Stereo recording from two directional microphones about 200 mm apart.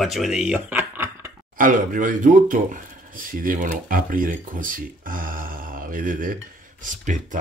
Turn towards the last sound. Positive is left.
turn(degrees=-40)  # may be behind; listen again after turning